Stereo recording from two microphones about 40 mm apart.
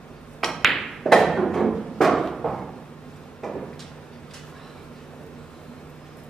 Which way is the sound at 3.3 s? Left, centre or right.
Centre.